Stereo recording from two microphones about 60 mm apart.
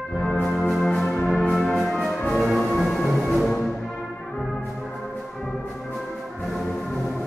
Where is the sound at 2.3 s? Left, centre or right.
Centre.